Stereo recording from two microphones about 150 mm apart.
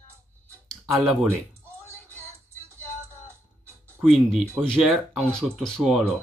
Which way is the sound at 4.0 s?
Centre (ahead or behind).